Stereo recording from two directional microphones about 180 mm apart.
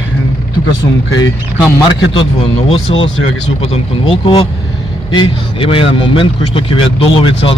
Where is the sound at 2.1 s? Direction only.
30° left (ahead or behind).